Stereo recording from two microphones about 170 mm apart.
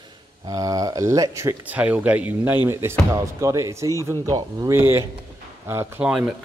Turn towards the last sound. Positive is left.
turn(degrees=-15)  # may be behind; listen again after turning